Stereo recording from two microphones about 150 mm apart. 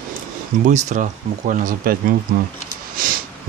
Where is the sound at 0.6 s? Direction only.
55° right (ahead or behind); by 2.1 s 70° right (ahead or behind).